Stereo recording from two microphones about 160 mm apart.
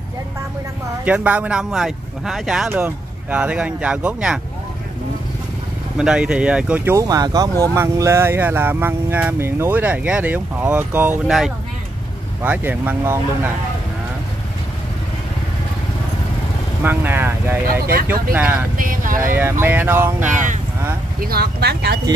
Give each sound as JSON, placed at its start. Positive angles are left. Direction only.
{"t": 1.0, "sound": "speech", "side_deg": -10}
{"t": 5.9, "sound": "speech", "side_deg": -5}
{"t": 11.2, "sound": "speech", "side_deg": 0}
{"t": 12.4, "sound": "speech", "side_deg": -10}
{"t": 16.8, "sound": "speech", "side_deg": -10}
{"t": 17.6, "sound": "speech", "side_deg": -70}
{"t": 18.8, "sound": "speech", "side_deg": -55}
{"t": 19.6, "sound": "speech", "side_deg": -15}
{"t": 20.2, "sound": "speech", "side_deg": -50}
{"t": 21.2, "sound": "speech", "side_deg": -70}